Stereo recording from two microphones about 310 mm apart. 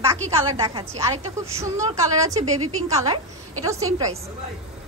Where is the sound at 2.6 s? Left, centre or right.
Right.